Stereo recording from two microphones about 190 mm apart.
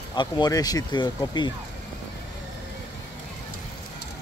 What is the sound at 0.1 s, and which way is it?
Speech, 20° left (ahead or behind).